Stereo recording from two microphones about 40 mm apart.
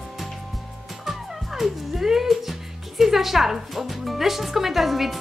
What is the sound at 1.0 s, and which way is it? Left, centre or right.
Speech, centre.